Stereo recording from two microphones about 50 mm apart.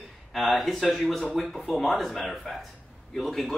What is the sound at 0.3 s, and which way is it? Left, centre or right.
Speech, centre.